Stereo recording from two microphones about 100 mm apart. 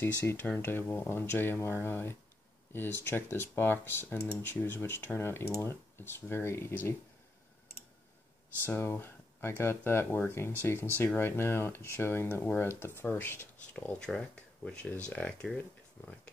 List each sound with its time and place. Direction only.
0.0 s speech: 25° left (ahead or behind)
8.6 s speech: 20° left (ahead or behind)
13.9 s speech: 5° left (ahead or behind)